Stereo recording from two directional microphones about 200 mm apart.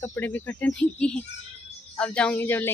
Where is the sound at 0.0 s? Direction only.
10° left (ahead or behind).